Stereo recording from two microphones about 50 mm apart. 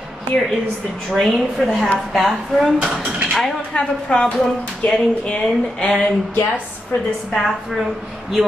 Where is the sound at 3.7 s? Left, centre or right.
Left.